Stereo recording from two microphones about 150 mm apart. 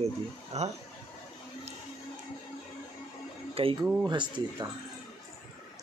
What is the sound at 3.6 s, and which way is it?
Speech, 40° right (ahead or behind).